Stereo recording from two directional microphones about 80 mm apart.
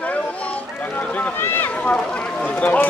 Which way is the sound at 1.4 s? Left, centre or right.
Left.